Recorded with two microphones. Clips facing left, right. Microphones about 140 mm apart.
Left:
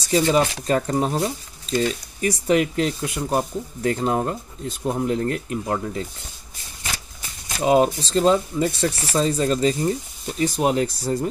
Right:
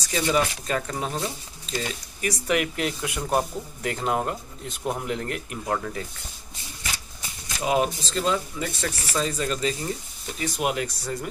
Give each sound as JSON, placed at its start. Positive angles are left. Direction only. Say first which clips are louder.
{"t": 0.1, "sound": "speech", "louder": "left 5 dB", "side_deg": 30}
{"t": 7.6, "sound": "speech", "louder": "left 6 dB", "side_deg": 35}